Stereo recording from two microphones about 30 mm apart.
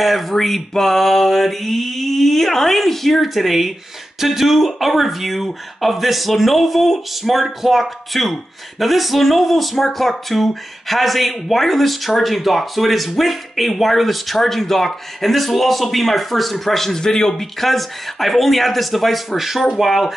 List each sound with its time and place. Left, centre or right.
0.0 s speech: centre
17.3 s speech: centre